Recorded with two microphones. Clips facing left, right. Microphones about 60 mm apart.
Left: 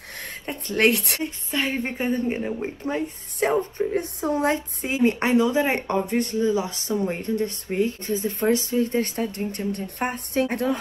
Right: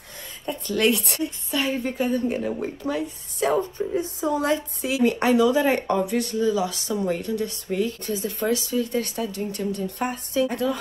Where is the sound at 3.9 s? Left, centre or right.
Left.